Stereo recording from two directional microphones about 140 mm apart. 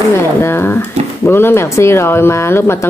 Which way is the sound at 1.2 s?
15° left (ahead or behind).